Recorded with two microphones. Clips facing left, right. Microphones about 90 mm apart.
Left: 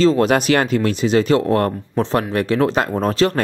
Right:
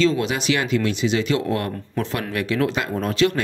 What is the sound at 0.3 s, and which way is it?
Speech, 50° left (ahead or behind).